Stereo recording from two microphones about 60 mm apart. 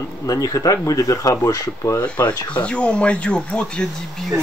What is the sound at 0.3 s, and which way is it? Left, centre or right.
Speech, left.